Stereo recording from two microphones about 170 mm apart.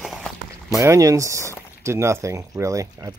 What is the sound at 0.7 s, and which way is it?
Speech, 20° right (ahead or behind).